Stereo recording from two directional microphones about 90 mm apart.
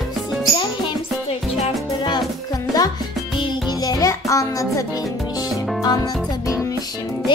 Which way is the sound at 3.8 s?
40° left (ahead or behind).